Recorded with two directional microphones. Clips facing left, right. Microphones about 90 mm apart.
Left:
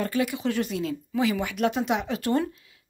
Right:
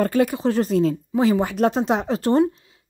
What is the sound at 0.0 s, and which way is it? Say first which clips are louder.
Speech: right 7 dB; 40° right (ahead or behind).